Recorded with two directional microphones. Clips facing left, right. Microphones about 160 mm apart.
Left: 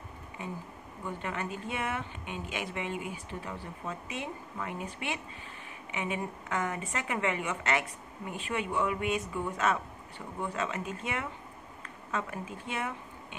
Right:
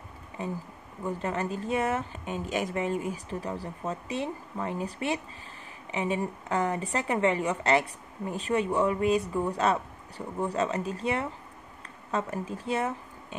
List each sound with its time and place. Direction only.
0.4 s speech: 35° right (ahead or behind)